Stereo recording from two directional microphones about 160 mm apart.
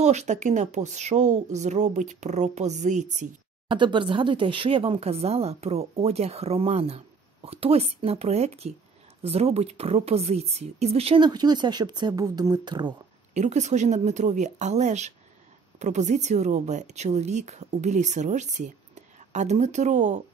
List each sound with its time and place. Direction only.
0.0 s a woman's voice: 45° right (ahead or behind)
3.6 s speech: 30° right (ahead or behind)
11.2 s speech: 25° right (ahead or behind)
13.3 s a woman's voice: 45° right (ahead or behind)